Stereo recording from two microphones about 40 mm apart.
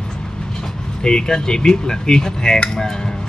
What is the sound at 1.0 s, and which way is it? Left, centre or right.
Speech, centre.